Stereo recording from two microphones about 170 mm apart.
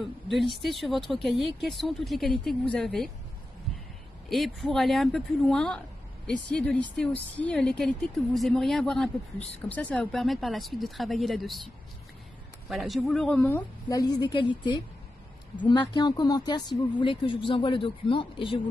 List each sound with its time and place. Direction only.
0.0 s a woman's voice: centre (ahead or behind)
4.3 s a woman's voice: centre (ahead or behind)
12.6 s a woman's voice: centre (ahead or behind)
13.8 s speech: 20° left (ahead or behind)